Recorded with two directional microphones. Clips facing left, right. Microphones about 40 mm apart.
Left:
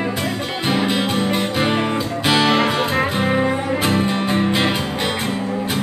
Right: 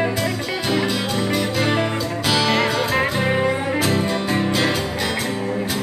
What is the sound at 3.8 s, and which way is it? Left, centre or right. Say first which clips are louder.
Music: left 1 dB; left.